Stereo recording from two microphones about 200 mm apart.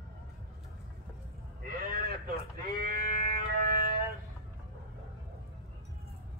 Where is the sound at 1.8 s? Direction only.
50° right (ahead or behind).